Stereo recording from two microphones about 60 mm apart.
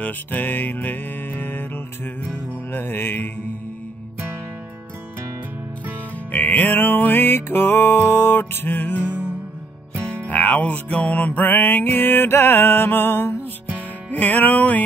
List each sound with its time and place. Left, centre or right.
0.0 s music: left
2.7 s music: left
6.3 s music: left
10.2 s music: left
13.7 s music: left